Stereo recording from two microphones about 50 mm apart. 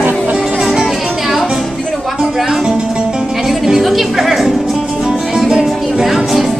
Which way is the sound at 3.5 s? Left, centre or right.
Centre.